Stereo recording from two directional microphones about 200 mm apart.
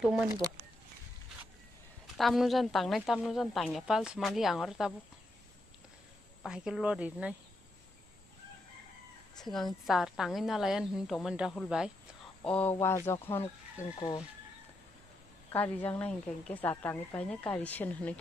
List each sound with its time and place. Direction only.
2.1 s a woman's voice: centre (ahead or behind)
6.4 s a woman's voice: 5° right (ahead or behind)
9.4 s a woman's voice: centre (ahead or behind)
12.4 s a woman's voice: 10° left (ahead or behind)
13.9 s speech: 25° left (ahead or behind)
15.5 s a woman's voice: 10° left (ahead or behind)